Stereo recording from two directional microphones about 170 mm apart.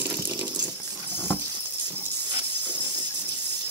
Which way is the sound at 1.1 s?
15° left (ahead or behind).